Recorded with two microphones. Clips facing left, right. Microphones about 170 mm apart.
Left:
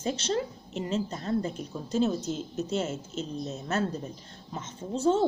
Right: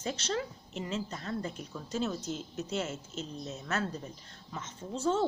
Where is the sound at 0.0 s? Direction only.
25° left (ahead or behind).